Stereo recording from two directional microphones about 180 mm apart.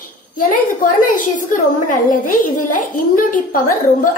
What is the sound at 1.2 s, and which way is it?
A woman's voice, 45° left (ahead or behind).